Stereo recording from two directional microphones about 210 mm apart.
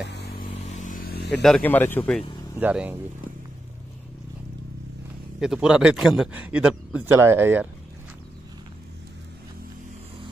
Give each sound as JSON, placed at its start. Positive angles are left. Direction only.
{"t": 0.1, "sound": "vehicle", "side_deg": 50}
{"t": 0.7, "sound": "a sound", "side_deg": 35}
{"t": 1.4, "sound": "speech", "side_deg": 5}
{"t": 2.6, "sound": "speech", "side_deg": -5}
{"t": 5.4, "sound": "a man's voice", "side_deg": -5}